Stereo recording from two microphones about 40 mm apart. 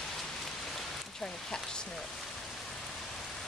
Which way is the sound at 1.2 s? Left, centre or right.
Centre.